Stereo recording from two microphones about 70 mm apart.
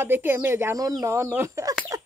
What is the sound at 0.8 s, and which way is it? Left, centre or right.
Speech, right.